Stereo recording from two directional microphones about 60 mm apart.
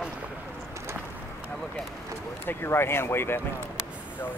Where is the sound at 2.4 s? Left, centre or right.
Left.